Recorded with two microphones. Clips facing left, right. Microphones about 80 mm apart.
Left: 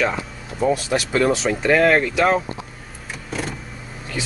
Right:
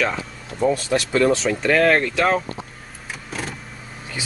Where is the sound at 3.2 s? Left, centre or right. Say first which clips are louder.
Left 3 dB; centre.